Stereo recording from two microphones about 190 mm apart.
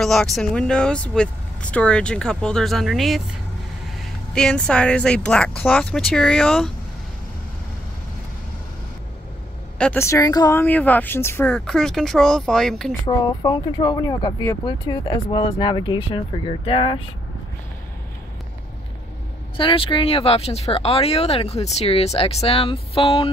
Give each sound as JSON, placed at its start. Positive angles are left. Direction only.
{"t": 0.0, "sound": "speech", "side_deg": 0}
{"t": 9.8, "sound": "speech", "side_deg": 10}
{"t": 13.0, "sound": "speech", "side_deg": 20}
{"t": 19.5, "sound": "speech", "side_deg": 25}